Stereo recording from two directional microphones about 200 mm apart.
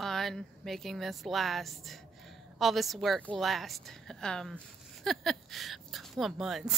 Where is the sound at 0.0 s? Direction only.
Centre (ahead or behind).